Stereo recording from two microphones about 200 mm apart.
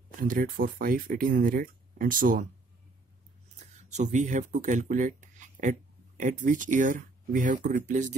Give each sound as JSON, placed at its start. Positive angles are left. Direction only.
{"t": 0.2, "sound": "speech", "side_deg": -45}
{"t": 3.9, "sound": "speech", "side_deg": -35}